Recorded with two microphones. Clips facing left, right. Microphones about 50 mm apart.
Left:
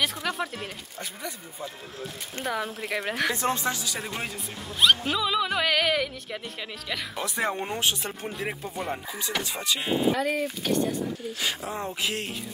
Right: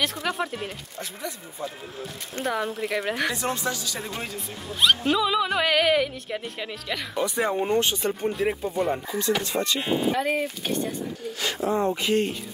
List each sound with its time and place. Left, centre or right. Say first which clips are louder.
0.0 s speech: right 2 dB; centre
3.3 s speech: left 1 dB; left
3.8 s speech: even; centre
4.6 s speech: right 1 dB; centre
10.1 s speech: right 2 dB; right
11.6 s speech: right 7 dB; centre